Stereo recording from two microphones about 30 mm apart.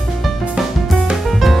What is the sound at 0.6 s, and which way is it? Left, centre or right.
Music, right.